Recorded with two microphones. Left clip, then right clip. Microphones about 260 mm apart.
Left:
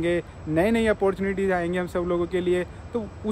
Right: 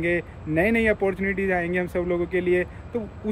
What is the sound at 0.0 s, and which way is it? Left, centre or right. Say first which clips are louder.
Speech: even; centre.